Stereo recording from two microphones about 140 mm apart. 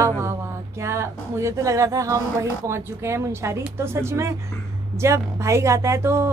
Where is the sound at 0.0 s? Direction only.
20° right (ahead or behind).